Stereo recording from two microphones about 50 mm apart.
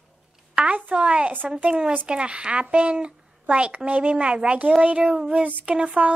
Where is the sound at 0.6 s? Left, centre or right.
Right.